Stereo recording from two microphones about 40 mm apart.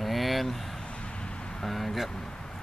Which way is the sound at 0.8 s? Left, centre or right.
Left.